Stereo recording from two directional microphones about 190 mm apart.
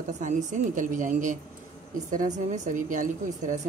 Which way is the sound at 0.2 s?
40° right (ahead or behind).